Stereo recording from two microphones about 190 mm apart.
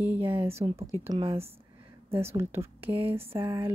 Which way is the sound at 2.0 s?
15° right (ahead or behind).